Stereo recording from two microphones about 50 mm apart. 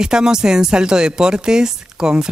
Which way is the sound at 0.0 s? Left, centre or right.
Centre.